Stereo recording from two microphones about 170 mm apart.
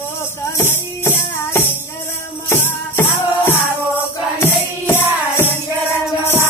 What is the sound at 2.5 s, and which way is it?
Music, 15° left (ahead or behind).